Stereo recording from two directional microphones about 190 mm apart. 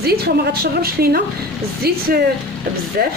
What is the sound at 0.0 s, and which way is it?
Speech, 55° right (ahead or behind).